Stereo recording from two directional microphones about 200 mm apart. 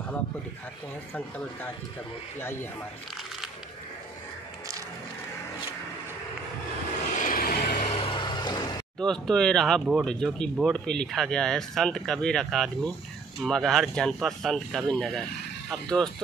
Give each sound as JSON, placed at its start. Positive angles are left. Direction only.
{"t": 2.4, "sound": "speech", "side_deg": 10}
{"t": 7.2, "sound": "vehicle", "side_deg": 45}
{"t": 7.9, "sound": "vehicle", "side_deg": 25}
{"t": 9.0, "sound": "speech", "side_deg": 5}